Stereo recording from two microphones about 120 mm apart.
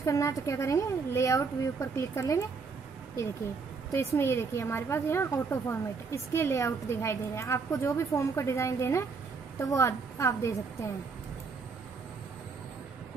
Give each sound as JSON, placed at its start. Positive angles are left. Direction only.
{"t": 0.0, "sound": "a woman's voice", "side_deg": 25}
{"t": 3.9, "sound": "a woman's voice", "side_deg": 25}